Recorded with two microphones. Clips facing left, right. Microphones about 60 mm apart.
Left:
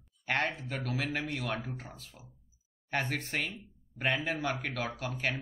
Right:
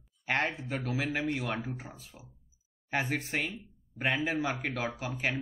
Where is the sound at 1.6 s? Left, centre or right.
Centre.